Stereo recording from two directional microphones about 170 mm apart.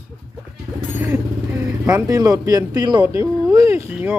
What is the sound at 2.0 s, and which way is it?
Speech, 20° right (ahead or behind).